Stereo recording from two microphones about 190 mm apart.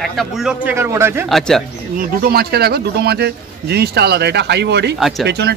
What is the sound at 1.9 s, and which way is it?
A man's voice, 55° right (ahead or behind).